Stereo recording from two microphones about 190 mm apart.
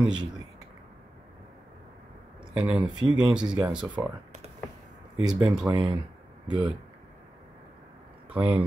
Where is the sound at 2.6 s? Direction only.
5° right (ahead or behind).